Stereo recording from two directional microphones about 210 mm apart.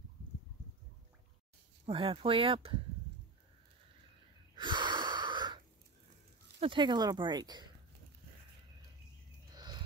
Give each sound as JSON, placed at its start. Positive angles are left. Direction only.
{"t": 1.9, "sound": "speech", "side_deg": -25}
{"t": 4.6, "sound": "wheeze", "side_deg": -20}
{"t": 6.6, "sound": "speech", "side_deg": -20}
{"t": 9.5, "sound": "a sound", "side_deg": -20}